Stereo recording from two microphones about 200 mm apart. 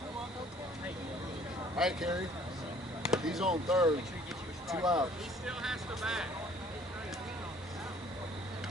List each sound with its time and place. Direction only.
1.8 s speech: centre (ahead or behind)
4.7 s speech: 20° right (ahead or behind)
5.5 s speech: centre (ahead or behind)